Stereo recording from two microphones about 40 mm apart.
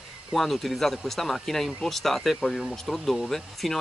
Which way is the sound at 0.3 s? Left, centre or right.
Centre.